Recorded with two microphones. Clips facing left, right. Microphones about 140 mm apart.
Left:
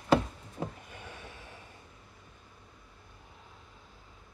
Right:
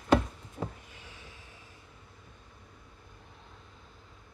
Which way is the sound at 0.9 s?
55° left (ahead or behind).